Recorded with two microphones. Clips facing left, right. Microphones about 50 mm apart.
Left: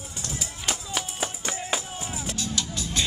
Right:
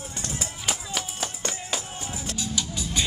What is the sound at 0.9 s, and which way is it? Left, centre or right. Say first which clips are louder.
Music: left 1 dB; centre.